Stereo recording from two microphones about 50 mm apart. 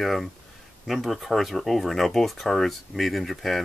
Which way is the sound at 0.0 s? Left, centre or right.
Centre.